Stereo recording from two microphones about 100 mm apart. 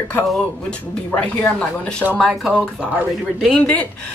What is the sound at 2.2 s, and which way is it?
Speech, 5° right (ahead or behind).